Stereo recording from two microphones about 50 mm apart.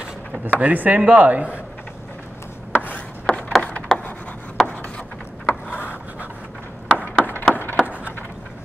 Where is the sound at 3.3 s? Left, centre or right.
Left.